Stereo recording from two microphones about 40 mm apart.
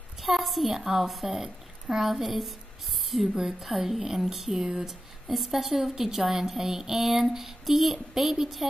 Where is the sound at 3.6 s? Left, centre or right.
Centre.